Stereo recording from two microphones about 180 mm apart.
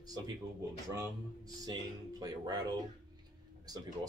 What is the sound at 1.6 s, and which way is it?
Speech, 20° right (ahead or behind).